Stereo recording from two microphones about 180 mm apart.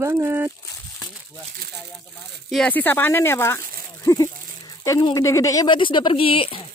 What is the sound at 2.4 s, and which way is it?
Speech, 5° left (ahead or behind).